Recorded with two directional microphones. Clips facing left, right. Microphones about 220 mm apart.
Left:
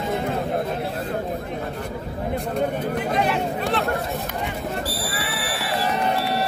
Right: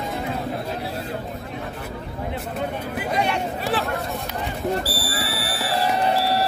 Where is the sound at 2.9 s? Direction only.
Centre (ahead or behind).